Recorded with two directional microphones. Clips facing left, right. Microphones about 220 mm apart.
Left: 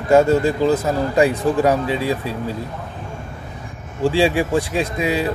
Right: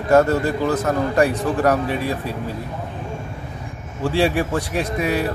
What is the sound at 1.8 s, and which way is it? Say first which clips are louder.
Speech: left 2 dB; 90° left.